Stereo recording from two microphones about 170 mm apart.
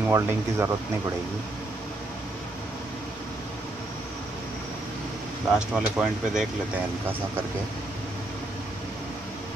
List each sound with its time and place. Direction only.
0.1 s speech: 15° right (ahead or behind)
5.5 s speech: 5° right (ahead or behind)